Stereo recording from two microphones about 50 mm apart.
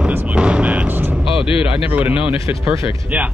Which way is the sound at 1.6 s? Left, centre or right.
Right.